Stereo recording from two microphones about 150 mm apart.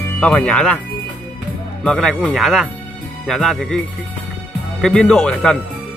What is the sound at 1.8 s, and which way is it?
Speech, 5° left (ahead or behind).